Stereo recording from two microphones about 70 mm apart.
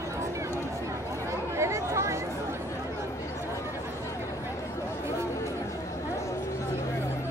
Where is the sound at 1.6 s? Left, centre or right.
Right.